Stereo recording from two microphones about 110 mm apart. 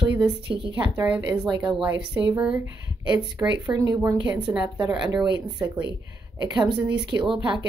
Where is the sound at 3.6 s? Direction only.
35° right (ahead or behind).